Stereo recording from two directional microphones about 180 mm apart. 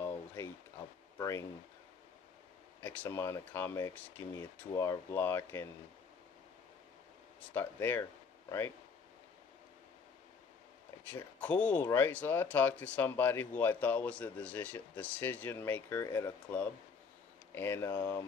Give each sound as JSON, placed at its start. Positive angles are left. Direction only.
{"t": 0.0, "sound": "a sound", "side_deg": 15}
{"t": 2.8, "sound": "speech", "side_deg": 10}
{"t": 7.5, "sound": "speech", "side_deg": 10}
{"t": 11.3, "sound": "speech", "side_deg": 5}